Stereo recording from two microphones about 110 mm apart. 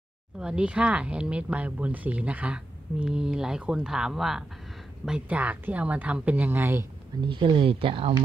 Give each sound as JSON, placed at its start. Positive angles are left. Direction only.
{"t": 0.4, "sound": "speech", "side_deg": -10}
{"t": 7.2, "sound": "speech", "side_deg": -45}